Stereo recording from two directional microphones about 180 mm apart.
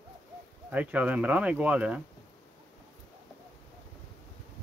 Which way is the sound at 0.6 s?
10° right (ahead or behind).